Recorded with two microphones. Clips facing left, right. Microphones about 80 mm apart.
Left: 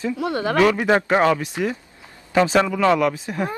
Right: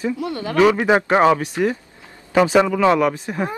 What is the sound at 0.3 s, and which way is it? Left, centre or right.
Speech, left.